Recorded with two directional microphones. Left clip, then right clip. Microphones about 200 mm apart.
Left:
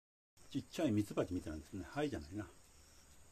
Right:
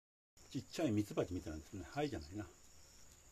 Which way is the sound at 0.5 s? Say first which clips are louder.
Left 1 dB; 5° left (ahead or behind).